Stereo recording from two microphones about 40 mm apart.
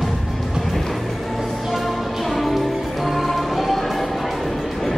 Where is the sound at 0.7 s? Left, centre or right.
Centre.